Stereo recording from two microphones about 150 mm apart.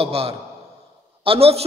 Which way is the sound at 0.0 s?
40° right (ahead or behind).